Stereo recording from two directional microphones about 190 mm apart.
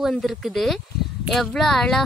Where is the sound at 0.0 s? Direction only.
Centre (ahead or behind).